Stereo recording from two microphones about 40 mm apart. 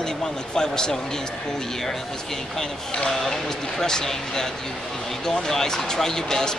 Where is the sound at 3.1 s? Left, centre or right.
Centre.